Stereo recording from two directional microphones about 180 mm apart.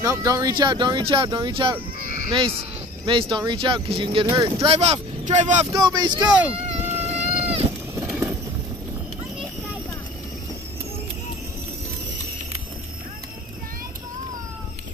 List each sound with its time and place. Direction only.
0.0 s speech: 15° right (ahead or behind)
3.1 s speech: 25° right (ahead or behind)
5.7 s speech: 20° right (ahead or behind)
6.9 s a sound: 35° right (ahead or behind)
7.2 s cat: 10° right (ahead or behind)